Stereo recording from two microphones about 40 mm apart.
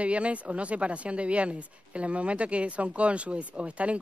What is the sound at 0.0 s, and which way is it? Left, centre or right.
Speech, right.